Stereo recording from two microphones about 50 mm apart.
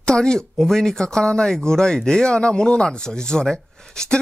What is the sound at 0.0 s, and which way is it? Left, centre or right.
Speech, centre.